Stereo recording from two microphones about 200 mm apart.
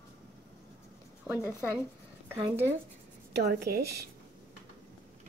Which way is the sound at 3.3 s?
50° right (ahead or behind).